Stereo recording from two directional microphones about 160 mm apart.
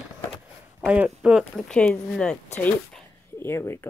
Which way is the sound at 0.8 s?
10° right (ahead or behind).